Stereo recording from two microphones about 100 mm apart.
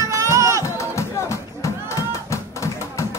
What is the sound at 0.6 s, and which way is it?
Music, 30° left (ahead or behind).